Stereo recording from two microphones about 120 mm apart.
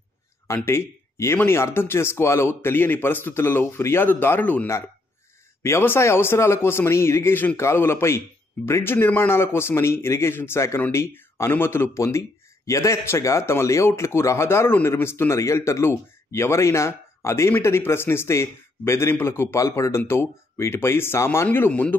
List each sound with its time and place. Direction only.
0.7 s speech: 20° left (ahead or behind)